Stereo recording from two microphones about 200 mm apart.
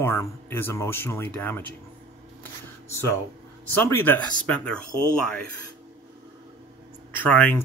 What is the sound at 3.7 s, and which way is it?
Speech, 10° left (ahead or behind).